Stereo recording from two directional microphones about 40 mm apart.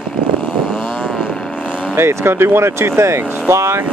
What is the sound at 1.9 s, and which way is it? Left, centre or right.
Speech, right.